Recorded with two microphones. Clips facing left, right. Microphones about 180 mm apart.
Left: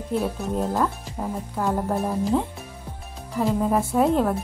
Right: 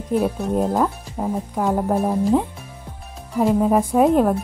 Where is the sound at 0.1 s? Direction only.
15° right (ahead or behind).